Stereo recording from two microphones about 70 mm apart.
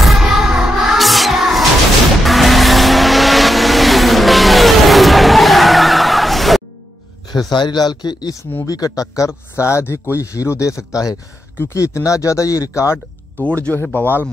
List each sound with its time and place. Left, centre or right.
0.0 s music: centre
2.2 s vehicle: centre
7.3 s speech: left
8.6 s speech: left
9.3 s speech: left
13.4 s speech: centre
13.9 s speech: left